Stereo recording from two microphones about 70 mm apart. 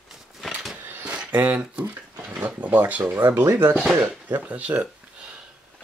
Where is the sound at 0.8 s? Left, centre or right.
Right.